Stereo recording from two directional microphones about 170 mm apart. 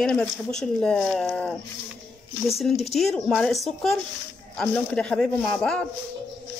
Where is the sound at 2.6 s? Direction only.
Centre (ahead or behind).